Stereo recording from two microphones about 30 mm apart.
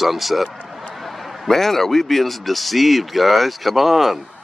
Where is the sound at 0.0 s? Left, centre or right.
Centre.